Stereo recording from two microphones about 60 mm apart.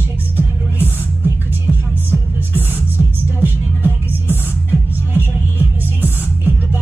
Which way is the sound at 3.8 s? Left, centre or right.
Left.